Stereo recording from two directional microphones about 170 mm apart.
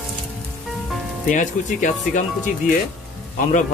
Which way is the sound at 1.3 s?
45° left (ahead or behind).